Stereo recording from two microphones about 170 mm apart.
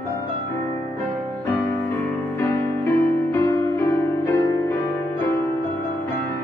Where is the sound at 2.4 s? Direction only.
15° left (ahead or behind).